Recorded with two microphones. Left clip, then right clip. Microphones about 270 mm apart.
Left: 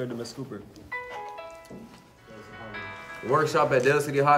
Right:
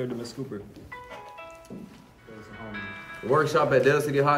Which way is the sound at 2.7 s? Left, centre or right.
Left.